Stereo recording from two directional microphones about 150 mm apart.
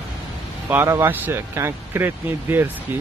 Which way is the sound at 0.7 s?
15° right (ahead or behind).